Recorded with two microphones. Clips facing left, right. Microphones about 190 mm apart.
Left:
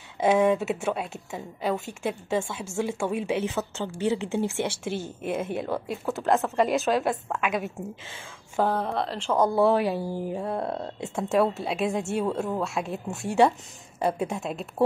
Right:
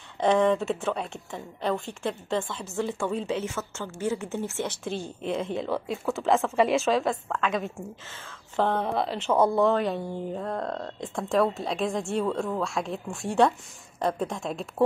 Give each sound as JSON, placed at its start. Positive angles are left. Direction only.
{"t": 0.2, "sound": "a woman's voice", "side_deg": 5}
{"t": 9.6, "sound": "a woman's voice", "side_deg": 10}